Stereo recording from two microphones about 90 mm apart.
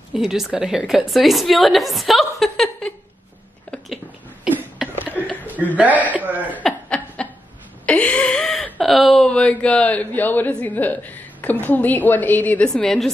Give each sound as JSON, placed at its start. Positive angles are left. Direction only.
{"t": 0.1, "sound": "a woman's voice", "side_deg": -5}
{"t": 4.9, "sound": "a sound", "side_deg": 20}
{"t": 5.3, "sound": "chuckle", "side_deg": 20}
{"t": 5.8, "sound": "speech", "side_deg": -15}
{"t": 6.6, "sound": "chuckle", "side_deg": 10}
{"t": 7.8, "sound": "a sound", "side_deg": 15}
{"t": 8.8, "sound": "a woman's voice", "side_deg": 0}
{"t": 12.6, "sound": "a woman's voice", "side_deg": 5}